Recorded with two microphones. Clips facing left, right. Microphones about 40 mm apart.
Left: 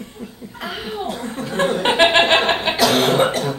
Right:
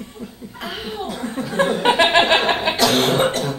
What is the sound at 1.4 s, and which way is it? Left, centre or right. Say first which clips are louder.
Chuckle: right 1 dB; left.